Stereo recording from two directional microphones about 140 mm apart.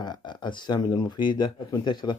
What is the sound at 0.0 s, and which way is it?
Speech, 30° left (ahead or behind).